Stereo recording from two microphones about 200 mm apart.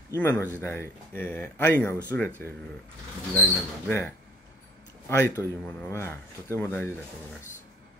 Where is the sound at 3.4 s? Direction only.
10° left (ahead or behind).